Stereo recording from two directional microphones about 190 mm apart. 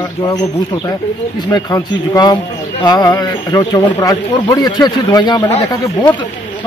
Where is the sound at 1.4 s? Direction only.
20° left (ahead or behind).